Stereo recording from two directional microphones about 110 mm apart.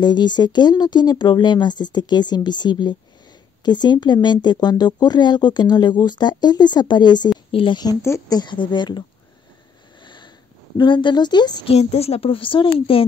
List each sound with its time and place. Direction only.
0.0 s a woman's voice: 40° left (ahead or behind)
10.0 s sniff: 45° left (ahead or behind)
10.8 s speech: 45° left (ahead or behind)
11.6 s a woman's voice: 70° left (ahead or behind)